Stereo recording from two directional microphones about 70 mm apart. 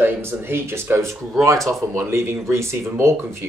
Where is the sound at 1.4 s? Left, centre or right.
Right.